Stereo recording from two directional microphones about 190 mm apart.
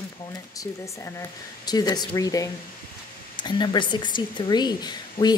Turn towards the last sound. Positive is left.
turn(degrees=20)  # may be behind; listen again after turning